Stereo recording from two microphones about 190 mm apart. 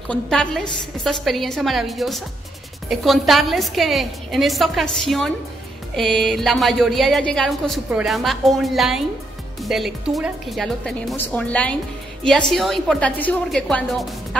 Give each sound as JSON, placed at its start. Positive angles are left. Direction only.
{"t": 0.1, "sound": "a woman's voice", "side_deg": 5}